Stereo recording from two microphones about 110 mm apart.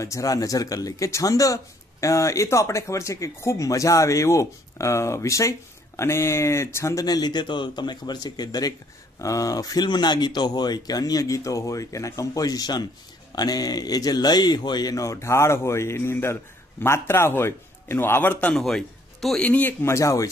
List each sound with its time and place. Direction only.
0.0 s speech: 30° left (ahead or behind); by 18.6 s 15° left (ahead or behind)
18.6 s a man's voice: 5° left (ahead or behind); by 20.2 s 30° left (ahead or behind)